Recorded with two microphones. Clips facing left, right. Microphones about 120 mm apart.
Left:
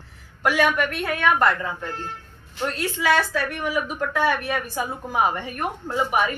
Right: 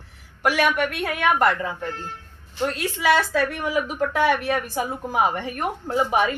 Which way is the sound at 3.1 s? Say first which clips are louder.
Right 2 dB; 25° right (ahead or behind).